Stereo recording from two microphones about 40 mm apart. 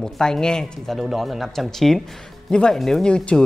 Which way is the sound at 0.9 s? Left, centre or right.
Centre.